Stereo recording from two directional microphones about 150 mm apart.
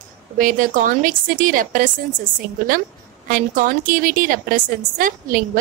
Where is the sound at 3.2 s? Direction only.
65° right (ahead or behind).